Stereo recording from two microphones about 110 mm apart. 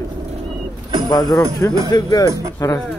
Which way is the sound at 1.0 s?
35° left (ahead or behind).